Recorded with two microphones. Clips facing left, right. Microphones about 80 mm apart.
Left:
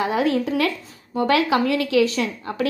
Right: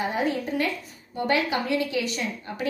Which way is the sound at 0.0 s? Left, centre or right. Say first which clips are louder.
Left 6 dB; left.